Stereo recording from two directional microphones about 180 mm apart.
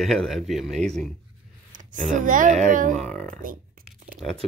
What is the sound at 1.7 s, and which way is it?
A child's voice, 45° right (ahead or behind).